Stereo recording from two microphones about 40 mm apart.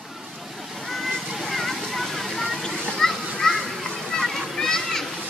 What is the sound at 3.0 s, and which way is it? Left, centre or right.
Children playing, centre.